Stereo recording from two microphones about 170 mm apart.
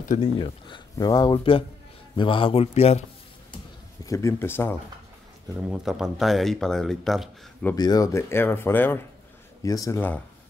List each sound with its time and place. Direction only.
0.0 s speech: 50° left (ahead or behind)
0.4 s speech: 30° left (ahead or behind)
4.0 s speech: 20° left (ahead or behind)
5.6 s speech: 5° right (ahead or behind)
7.7 s speech: 20° left (ahead or behind)
9.9 s speech: 10° left (ahead or behind)